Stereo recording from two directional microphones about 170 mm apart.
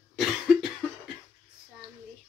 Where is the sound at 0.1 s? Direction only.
Centre (ahead or behind).